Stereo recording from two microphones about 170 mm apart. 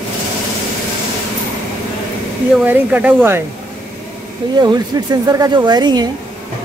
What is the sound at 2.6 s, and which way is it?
Speech, 10° right (ahead or behind).